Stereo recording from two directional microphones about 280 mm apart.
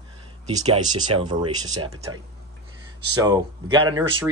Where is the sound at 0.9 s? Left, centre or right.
Centre.